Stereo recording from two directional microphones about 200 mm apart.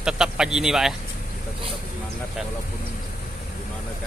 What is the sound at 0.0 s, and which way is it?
Speech, 5° right (ahead or behind).